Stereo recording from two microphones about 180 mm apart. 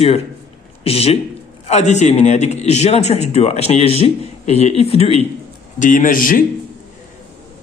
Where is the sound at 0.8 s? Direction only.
35° left (ahead or behind).